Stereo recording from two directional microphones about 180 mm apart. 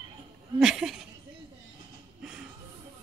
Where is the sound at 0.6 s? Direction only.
5° right (ahead or behind).